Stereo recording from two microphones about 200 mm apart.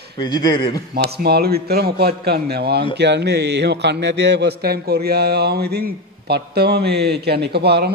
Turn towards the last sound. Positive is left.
turn(degrees=-55)  # may be behind; listen again after turning